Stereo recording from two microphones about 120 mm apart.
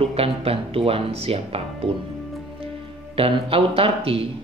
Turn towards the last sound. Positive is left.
turn(degrees=-50)  # may be behind; listen again after turning